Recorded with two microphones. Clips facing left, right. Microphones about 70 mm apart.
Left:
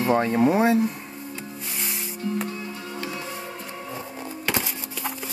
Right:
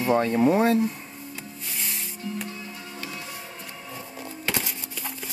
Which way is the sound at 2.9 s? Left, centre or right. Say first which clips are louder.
Left 5 dB; left.